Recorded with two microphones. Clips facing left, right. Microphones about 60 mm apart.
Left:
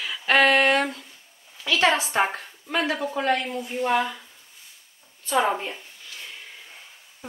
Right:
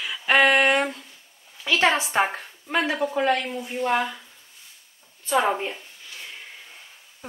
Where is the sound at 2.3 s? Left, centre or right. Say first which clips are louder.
Right 2 dB; centre.